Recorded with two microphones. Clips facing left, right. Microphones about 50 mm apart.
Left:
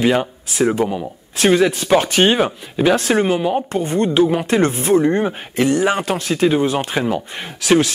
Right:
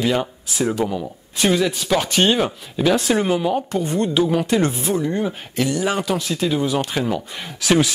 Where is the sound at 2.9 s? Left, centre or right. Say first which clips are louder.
Left 2 dB; left.